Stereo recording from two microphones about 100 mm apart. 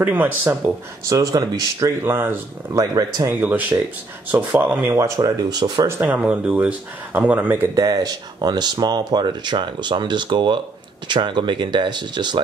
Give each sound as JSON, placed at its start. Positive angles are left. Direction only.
{"t": 0.0, "sound": "speech", "side_deg": -20}
{"t": 1.0, "sound": "speech", "side_deg": -35}
{"t": 2.0, "sound": "speech", "side_deg": -25}
{"t": 3.3, "sound": "speech", "side_deg": -20}
{"t": 4.8, "sound": "speech", "side_deg": -30}
{"t": 6.0, "sound": "speech", "side_deg": -10}
{"t": 7.7, "sound": "speech", "side_deg": -40}